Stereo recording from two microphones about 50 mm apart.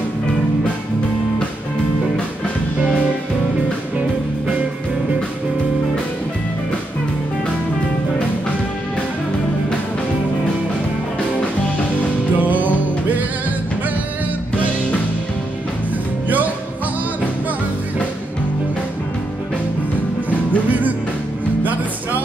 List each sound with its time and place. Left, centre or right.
12.4 s music: right
20.2 s music: right